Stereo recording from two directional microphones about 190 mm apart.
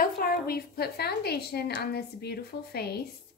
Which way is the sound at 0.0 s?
50° left (ahead or behind).